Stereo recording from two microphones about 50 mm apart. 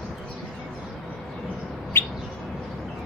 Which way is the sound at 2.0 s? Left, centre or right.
Left.